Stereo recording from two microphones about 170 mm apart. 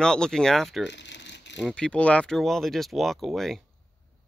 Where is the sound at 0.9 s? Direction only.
90° left.